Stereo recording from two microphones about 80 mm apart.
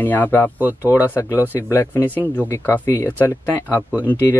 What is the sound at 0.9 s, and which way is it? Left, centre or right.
Speech, left.